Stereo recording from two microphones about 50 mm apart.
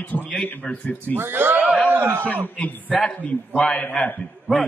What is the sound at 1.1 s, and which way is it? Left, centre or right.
Speech, right.